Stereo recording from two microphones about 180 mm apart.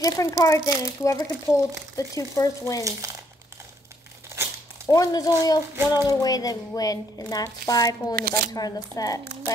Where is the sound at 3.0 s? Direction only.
20° right (ahead or behind).